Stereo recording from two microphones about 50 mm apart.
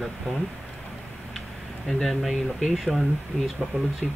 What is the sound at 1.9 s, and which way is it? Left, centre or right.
Speech, centre.